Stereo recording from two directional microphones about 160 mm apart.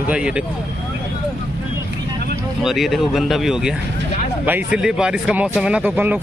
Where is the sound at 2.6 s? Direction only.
Centre (ahead or behind).